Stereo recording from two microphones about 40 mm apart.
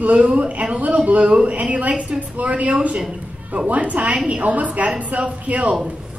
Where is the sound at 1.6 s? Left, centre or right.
Right.